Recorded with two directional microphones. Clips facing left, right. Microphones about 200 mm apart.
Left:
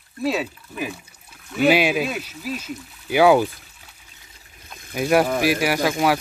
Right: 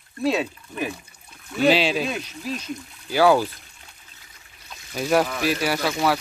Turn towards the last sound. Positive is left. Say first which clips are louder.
# left 3 dB
turn(degrees=10)  # may be behind; listen again after turning